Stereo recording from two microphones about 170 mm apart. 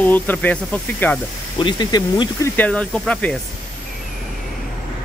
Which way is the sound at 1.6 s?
25° left (ahead or behind).